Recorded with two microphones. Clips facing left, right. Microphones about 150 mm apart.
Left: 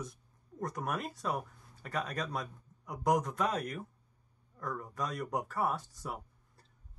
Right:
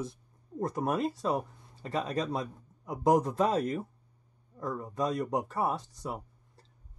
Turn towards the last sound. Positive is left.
turn(degrees=-20)  # may be behind; listen again after turning